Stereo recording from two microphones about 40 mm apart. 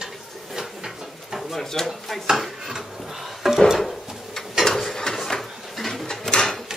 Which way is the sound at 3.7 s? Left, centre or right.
Centre.